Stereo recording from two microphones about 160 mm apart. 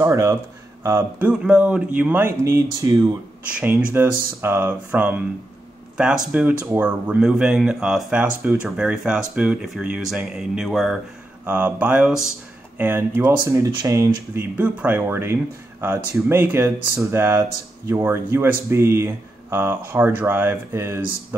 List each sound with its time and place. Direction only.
0.0 s speech: 20° right (ahead or behind)
1.3 s speech: 5° right (ahead or behind)
2.8 s speech: 20° right (ahead or behind)
3.4 s speech: 10° right (ahead or behind)
11.4 s speech: 10° right (ahead or behind)